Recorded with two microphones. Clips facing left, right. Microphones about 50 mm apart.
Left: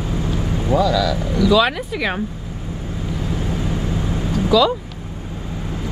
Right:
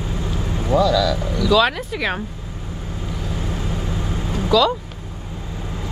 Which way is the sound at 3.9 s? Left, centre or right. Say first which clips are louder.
Left 3 dB; left.